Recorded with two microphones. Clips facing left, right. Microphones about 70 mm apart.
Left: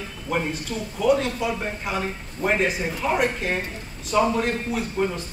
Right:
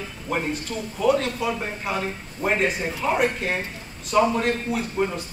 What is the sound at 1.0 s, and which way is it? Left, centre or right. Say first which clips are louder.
A man's voice: even; centre.